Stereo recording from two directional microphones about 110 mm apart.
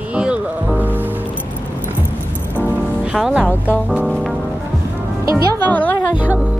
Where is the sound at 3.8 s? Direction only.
15° right (ahead or behind).